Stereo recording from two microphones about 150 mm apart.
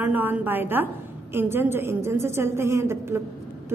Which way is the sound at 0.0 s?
10° right (ahead or behind).